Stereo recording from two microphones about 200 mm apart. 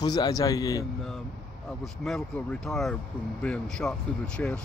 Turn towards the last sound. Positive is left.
turn(degrees=5)  # may be behind; listen again after turning